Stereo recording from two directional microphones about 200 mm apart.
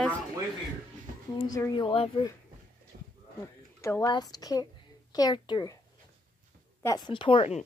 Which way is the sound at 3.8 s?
15° left (ahead or behind).